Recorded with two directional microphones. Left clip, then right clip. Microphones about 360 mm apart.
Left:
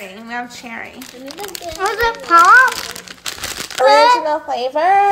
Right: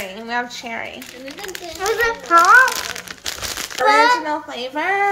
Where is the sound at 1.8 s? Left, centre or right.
Centre.